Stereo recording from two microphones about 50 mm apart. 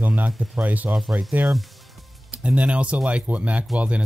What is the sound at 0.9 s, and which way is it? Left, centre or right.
Speech, centre.